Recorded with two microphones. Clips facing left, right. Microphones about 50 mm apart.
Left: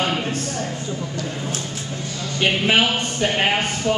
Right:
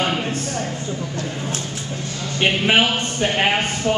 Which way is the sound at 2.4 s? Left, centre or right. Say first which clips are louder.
Right 1 dB; centre.